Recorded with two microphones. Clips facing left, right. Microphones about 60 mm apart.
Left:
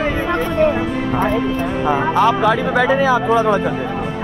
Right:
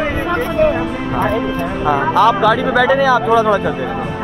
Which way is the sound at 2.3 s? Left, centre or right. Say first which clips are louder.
Right 2 dB; right.